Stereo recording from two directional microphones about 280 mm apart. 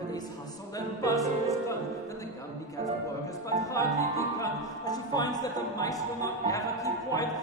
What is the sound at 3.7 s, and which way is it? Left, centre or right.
Music, centre.